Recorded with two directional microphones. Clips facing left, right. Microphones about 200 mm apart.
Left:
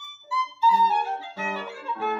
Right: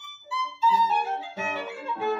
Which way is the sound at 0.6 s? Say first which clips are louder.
Left 2 dB; 20° right (ahead or behind).